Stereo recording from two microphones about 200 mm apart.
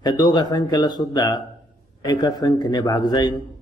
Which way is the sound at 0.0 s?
20° left (ahead or behind).